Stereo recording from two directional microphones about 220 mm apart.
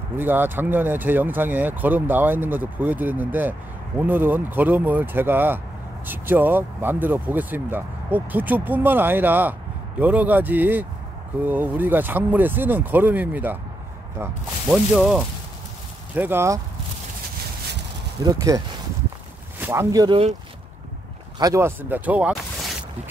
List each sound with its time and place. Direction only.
0.2 s speech: 10° right (ahead or behind)
14.7 s speech: 5° right (ahead or behind)
18.2 s speech: 15° right (ahead or behind)
19.6 s speech: 10° right (ahead or behind)
21.4 s speech: 15° right (ahead or behind)